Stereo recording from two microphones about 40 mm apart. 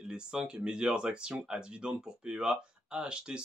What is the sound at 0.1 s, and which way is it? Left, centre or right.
Speech, centre.